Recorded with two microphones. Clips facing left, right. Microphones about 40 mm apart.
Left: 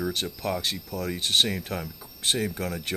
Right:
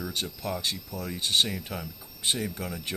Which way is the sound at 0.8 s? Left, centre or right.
Left.